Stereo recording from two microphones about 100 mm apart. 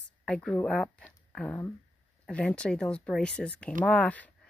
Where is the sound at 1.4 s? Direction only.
15° left (ahead or behind).